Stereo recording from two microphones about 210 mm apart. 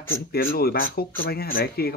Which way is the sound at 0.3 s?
45° left (ahead or behind).